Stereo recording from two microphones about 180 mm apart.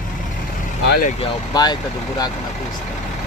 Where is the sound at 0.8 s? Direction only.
60° left (ahead or behind).